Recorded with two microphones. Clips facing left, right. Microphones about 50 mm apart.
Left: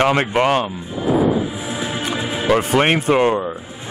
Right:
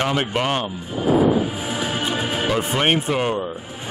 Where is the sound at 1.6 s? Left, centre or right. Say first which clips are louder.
Even; right.